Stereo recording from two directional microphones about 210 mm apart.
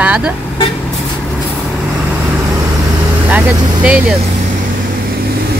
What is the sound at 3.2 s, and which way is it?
Speech, 5° right (ahead or behind).